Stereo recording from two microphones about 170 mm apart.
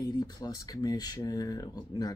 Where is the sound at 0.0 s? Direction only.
25° left (ahead or behind).